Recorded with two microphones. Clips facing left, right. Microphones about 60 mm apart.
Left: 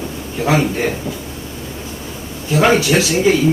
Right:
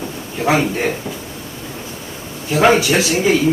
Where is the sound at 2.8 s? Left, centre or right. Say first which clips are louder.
Left 1 dB; right.